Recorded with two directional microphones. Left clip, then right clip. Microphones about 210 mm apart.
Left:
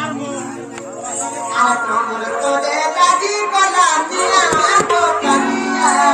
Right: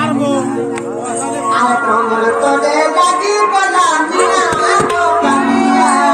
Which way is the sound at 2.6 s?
15° left (ahead or behind).